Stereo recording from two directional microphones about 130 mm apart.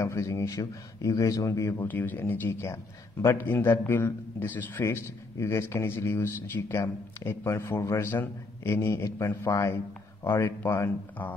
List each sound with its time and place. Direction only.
0.0 s speech: 20° left (ahead or behind)